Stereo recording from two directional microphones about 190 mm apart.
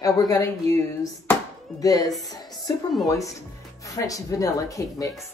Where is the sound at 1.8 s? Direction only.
20° left (ahead or behind).